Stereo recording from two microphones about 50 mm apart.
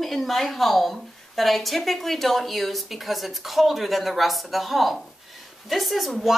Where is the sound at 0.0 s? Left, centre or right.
Centre.